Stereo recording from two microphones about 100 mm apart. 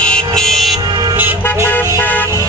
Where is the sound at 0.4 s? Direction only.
Centre (ahead or behind).